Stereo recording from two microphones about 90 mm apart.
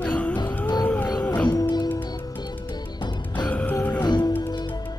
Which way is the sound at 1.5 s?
50° left (ahead or behind).